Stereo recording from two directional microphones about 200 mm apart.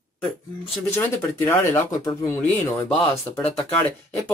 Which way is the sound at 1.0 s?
15° left (ahead or behind).